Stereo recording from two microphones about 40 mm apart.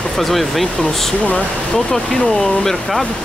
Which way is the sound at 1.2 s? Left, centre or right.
Left.